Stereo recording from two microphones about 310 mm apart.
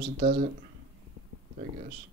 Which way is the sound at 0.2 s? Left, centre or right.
Right.